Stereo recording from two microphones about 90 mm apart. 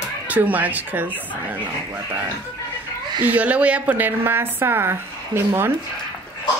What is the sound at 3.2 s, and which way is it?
A woman's voice, 20° right (ahead or behind).